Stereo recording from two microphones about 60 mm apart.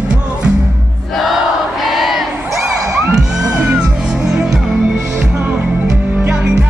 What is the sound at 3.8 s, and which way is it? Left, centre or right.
Music, centre.